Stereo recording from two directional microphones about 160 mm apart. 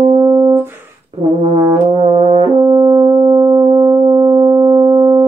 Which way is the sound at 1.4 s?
35° right (ahead or behind).